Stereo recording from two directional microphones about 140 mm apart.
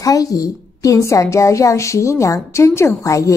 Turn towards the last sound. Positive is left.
turn(degrees=25)  # may be behind; listen again after turning